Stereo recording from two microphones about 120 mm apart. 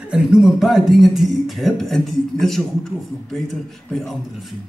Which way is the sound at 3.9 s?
Centre (ahead or behind).